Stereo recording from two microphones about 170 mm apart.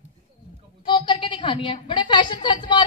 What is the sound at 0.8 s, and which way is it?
A woman's voice, 25° left (ahead or behind).